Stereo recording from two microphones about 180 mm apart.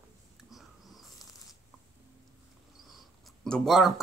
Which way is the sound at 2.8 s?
Centre (ahead or behind).